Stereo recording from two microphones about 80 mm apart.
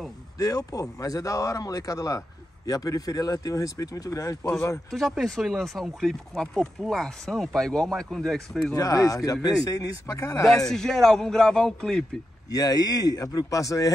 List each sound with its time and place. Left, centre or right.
0.4 s speech: left
4.9 s speech: centre
8.7 s speech: left
10.4 s speech: centre
12.4 s speech: left